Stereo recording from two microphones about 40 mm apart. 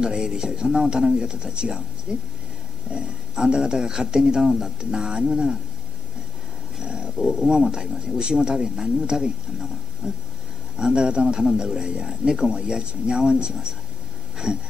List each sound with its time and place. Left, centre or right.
0.0 s a man's voice: centre
3.4 s speech: centre
6.8 s a man's voice: centre
14.3 s a sound: centre